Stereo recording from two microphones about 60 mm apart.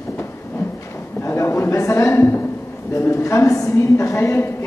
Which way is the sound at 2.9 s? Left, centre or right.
Left.